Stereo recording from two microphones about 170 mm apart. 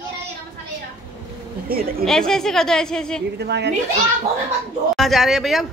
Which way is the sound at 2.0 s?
5° left (ahead or behind).